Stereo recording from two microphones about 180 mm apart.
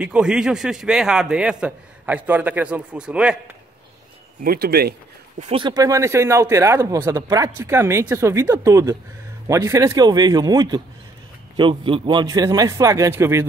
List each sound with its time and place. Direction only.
0.0 s a man's voice: 5° right (ahead or behind)
4.4 s speech: 55° right (ahead or behind)
5.4 s a man's voice: 30° right (ahead or behind); by 13.5 s 15° right (ahead or behind)